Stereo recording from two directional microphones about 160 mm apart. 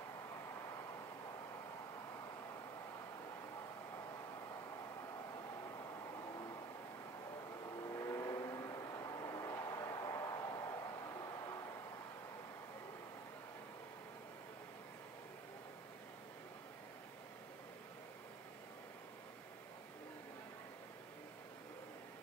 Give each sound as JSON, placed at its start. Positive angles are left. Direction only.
{"t": 6.3, "sound": "vehicle", "side_deg": 20}
{"t": 7.7, "sound": "vehicle", "side_deg": 20}